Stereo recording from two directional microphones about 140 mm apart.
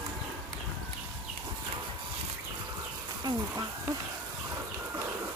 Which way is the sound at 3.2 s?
30° right (ahead or behind).